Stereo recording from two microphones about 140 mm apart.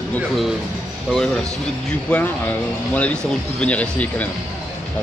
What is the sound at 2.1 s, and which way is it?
Speech, 10° left (ahead or behind).